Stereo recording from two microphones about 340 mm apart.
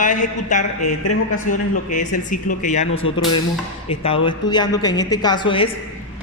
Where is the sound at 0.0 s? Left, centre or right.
Left.